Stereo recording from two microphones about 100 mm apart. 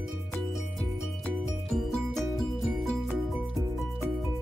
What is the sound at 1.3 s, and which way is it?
Music, 5° left (ahead or behind).